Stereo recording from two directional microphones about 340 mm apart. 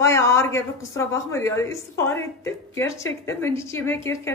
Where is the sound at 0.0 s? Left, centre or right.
Centre.